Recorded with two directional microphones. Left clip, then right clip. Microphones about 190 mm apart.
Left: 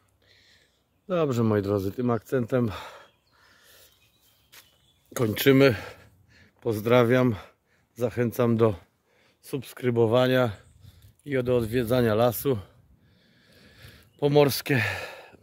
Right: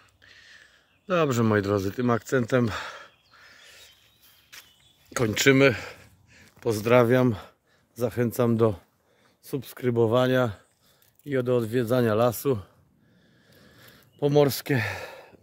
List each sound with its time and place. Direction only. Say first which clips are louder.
0.2 s speech: right 8 dB; centre (ahead or behind)
3.4 s crow: right 6 dB; 20° left (ahead or behind)
4.5 s walk: right 5 dB; 5° left (ahead or behind)
5.1 s a sound: right 1 dB; 15° left (ahead or behind)
6.6 s speech: right 1 dB; 5° left (ahead or behind)
13.5 s sigh: left 1 dB; 5° left (ahead or behind)